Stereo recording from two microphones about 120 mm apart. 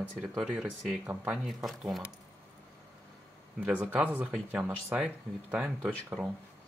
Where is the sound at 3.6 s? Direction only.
15° right (ahead or behind).